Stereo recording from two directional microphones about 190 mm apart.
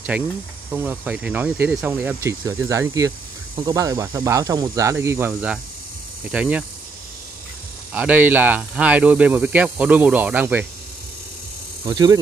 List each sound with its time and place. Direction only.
0.1 s speech: 5° right (ahead or behind)
7.9 s speech: 10° right (ahead or behind)
11.8 s speech: 20° right (ahead or behind)